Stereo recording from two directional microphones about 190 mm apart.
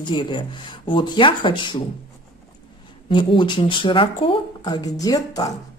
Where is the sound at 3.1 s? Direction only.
25° left (ahead or behind).